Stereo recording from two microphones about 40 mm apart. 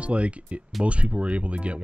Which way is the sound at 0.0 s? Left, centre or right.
Right.